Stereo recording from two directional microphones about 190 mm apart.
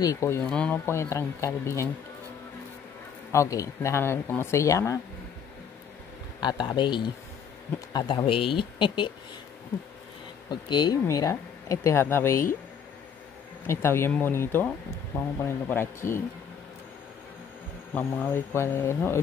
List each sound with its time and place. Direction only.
0.0 s speech: 15° left (ahead or behind)
3.3 s speech: 15° left (ahead or behind)
6.4 s speech: 25° left (ahead or behind)
10.5 s speech: 25° left (ahead or behind)
13.7 s speech: 15° left (ahead or behind)
17.9 s speech: 10° left (ahead or behind)